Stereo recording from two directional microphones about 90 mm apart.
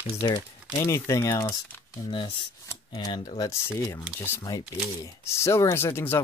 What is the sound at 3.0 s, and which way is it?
Speech, 45° left (ahead or behind).